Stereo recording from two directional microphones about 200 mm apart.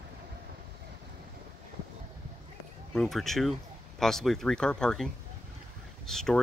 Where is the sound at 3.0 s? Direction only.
Centre (ahead or behind).